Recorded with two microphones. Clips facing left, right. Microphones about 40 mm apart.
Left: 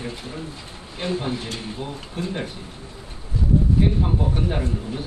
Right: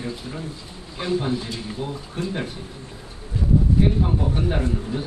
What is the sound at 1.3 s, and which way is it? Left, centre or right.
Speech, left.